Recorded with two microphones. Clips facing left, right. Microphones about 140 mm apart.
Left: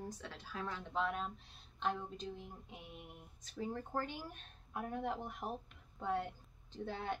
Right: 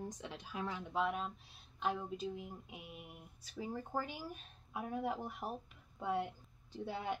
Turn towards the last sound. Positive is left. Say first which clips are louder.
# right 1 dB
turn(degrees=-10)  # may be behind; listen again after turning